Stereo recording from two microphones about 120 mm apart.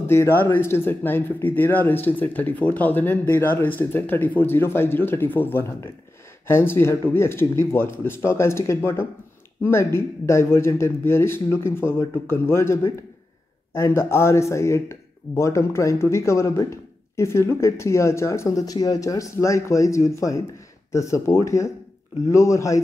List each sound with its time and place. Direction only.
0.0 s speech: 20° left (ahead or behind)